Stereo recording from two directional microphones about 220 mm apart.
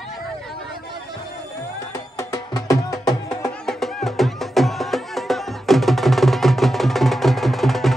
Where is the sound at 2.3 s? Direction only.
15° left (ahead or behind).